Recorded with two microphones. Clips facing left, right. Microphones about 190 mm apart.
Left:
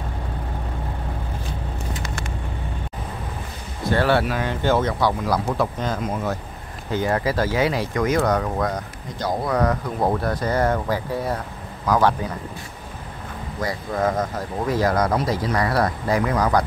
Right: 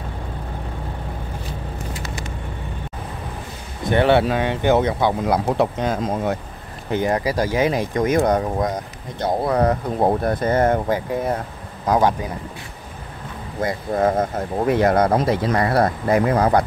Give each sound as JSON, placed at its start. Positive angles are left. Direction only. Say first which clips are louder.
{"t": 3.8, "sound": "speech", "louder": "right 3 dB", "side_deg": -20}
{"t": 13.6, "sound": "speech", "louder": "right 4 dB", "side_deg": -25}